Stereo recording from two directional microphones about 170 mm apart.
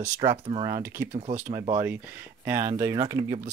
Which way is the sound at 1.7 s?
15° right (ahead or behind).